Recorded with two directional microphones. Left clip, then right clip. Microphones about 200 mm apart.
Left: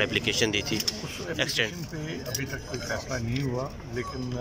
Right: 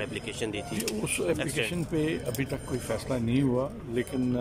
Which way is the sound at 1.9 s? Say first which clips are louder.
Right 9 dB; 25° right (ahead or behind).